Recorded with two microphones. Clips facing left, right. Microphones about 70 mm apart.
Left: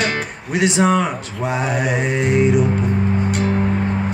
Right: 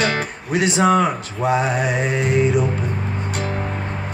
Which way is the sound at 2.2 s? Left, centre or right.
Left.